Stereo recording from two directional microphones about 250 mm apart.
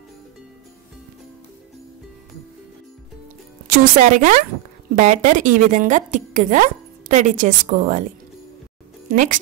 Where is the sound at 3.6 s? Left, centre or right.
Right.